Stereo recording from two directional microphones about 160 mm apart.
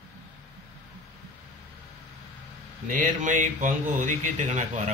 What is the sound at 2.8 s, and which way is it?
Speech, 55° right (ahead or behind).